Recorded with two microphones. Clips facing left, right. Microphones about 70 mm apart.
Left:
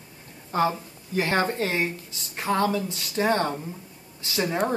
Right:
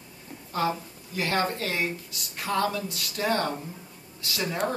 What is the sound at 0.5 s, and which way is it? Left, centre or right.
Speech, left.